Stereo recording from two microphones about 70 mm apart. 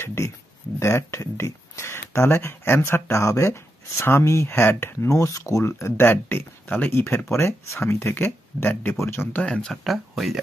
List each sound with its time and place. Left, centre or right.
0.0 s speech: left
9.4 s speech: centre
9.8 s speech: centre